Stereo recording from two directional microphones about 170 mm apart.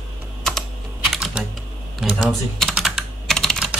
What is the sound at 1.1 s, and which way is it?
Typing, 5° right (ahead or behind).